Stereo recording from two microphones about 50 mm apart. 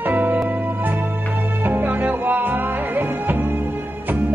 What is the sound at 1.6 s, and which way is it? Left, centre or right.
Music, right.